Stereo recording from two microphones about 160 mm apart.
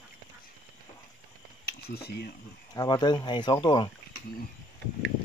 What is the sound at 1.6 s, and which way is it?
Speech, 80° left.